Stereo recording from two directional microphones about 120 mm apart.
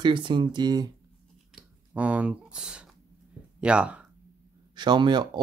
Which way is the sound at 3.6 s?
10° right (ahead or behind).